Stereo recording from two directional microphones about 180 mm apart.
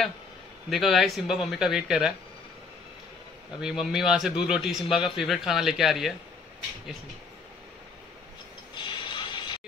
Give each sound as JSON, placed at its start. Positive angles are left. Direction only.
{"t": 0.7, "sound": "a man's voice", "side_deg": 0}
{"t": 3.6, "sound": "a man's voice", "side_deg": -5}
{"t": 8.7, "sound": "a sound", "side_deg": 25}